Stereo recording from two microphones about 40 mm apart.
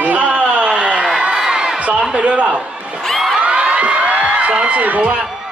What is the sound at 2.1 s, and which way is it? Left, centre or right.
Speech, right.